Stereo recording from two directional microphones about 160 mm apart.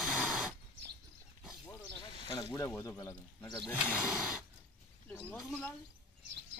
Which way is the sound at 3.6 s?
10° right (ahead or behind).